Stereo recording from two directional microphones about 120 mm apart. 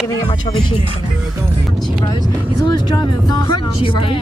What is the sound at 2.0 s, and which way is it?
Speech, 30° left (ahead or behind).